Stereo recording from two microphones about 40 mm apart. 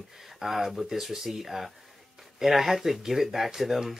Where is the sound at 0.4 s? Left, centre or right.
Centre.